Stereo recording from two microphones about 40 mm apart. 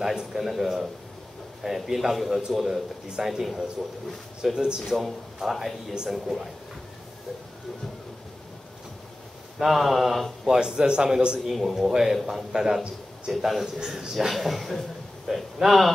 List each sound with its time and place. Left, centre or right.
0.0 s a man's voice: centre
4.6 s speech: centre
5.4 s a man's voice: centre
9.6 s a man's voice: centre
10.4 s a man's voice: centre
11.3 s a man's voice: centre
13.7 s a man's voice: centre
14.1 s a man's voice: centre